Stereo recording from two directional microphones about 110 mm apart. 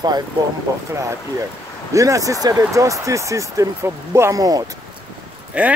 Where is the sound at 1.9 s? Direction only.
30° right (ahead or behind).